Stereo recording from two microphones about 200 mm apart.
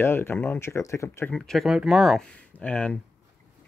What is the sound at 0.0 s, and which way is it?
Speech, 10° left (ahead or behind).